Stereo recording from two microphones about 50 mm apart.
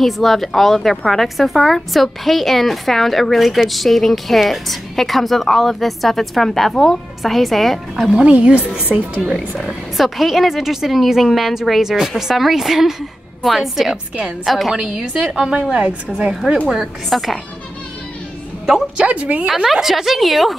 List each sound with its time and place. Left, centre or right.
0.0 s a woman's voice: centre
8.1 s a woman's voice: right
9.2 s a woman's voice: centre
14.7 s a woman's voice: centre
16.6 s a woman's voice: centre
19.0 s speech: right
19.4 s a woman's voice: centre